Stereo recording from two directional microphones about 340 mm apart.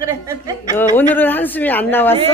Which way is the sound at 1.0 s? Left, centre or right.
Centre.